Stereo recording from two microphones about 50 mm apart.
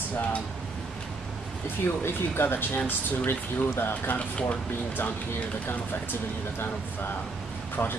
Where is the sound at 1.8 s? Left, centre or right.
Left.